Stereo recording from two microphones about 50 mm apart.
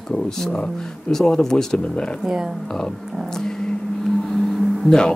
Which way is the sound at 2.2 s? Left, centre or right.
Centre.